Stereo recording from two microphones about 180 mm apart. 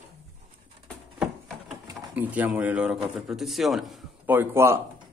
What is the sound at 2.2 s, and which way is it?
A man's voice, 10° right (ahead or behind).